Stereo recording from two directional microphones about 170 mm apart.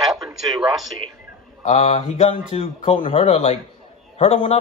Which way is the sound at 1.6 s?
40° left (ahead or behind).